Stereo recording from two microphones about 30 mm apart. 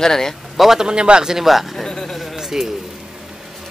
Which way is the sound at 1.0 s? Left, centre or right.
Right.